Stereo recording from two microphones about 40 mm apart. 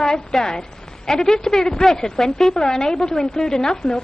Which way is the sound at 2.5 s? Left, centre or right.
Centre.